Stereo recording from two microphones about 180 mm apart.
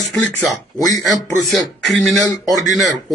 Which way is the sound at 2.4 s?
20° left (ahead or behind).